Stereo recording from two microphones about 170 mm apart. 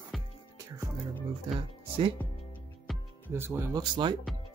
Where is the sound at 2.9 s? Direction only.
Centre (ahead or behind).